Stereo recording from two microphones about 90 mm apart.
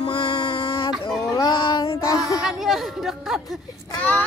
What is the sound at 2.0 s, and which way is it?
Child singing, 35° left (ahead or behind).